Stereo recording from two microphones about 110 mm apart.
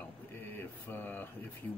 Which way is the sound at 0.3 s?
20° left (ahead or behind).